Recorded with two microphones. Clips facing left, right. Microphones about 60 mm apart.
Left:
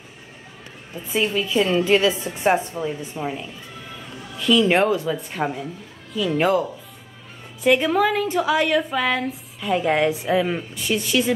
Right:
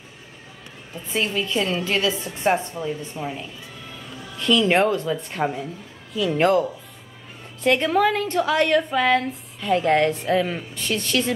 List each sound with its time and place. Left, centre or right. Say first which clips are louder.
0.9 s a woman's voice: left 2 dB; centre
1.9 s a woman's voice: left 5 dB; left
4.4 s a woman's voice: left 1 dB; centre